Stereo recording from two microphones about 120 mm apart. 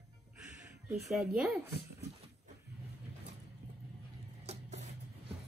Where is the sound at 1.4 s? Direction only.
Centre (ahead or behind).